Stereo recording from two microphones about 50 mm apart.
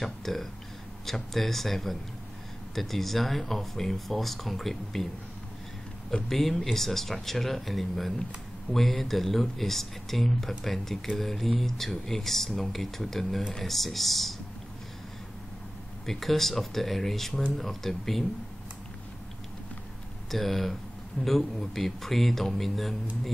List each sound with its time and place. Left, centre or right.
0.0 s speech: centre
6.2 s speech: centre
16.1 s speech: centre
20.2 s speech: centre